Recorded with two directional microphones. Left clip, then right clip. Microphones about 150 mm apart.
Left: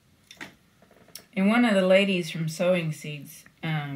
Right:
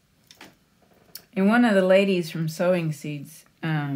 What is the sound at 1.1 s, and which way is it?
Speech, 40° right (ahead or behind).